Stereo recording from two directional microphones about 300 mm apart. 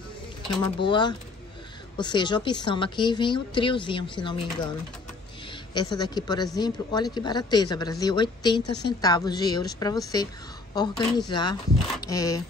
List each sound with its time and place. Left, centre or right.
0.5 s a woman's voice: centre
5.8 s a woman's voice: centre